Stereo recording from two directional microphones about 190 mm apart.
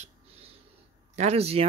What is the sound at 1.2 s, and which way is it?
Speech, 35° right (ahead or behind).